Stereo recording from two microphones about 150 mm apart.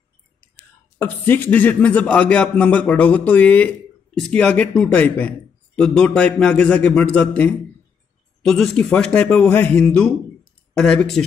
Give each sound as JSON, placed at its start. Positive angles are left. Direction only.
{"t": 0.9, "sound": "speech", "side_deg": 15}